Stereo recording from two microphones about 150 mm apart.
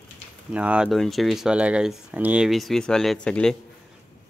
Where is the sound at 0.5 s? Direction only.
5° right (ahead or behind).